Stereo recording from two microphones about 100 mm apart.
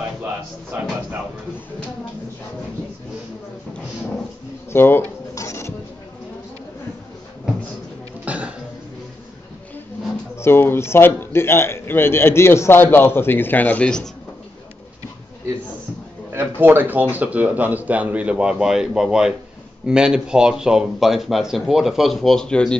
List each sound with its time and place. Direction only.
0.2 s speech: 15° right (ahead or behind)
4.7 s a man's voice: 20° left (ahead or behind)
5.3 s dishes: 30° left (ahead or behind)
8.3 s throat clearing: 15° right (ahead or behind)
10.4 s a man's voice: 25° left (ahead or behind)
16.3 s speech: 20° right (ahead or behind); by 22.8 s 10° left (ahead or behind)